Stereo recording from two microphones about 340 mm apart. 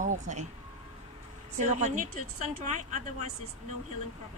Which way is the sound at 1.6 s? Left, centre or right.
Centre.